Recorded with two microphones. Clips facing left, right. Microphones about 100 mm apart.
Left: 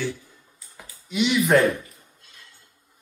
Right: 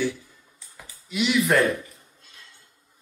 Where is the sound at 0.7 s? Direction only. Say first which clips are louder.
Left 3 dB; centre (ahead or behind).